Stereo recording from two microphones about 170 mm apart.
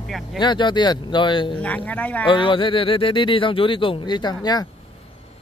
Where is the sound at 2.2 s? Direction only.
30° left (ahead or behind).